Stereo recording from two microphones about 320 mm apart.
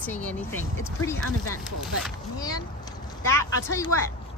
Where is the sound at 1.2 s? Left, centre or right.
Left.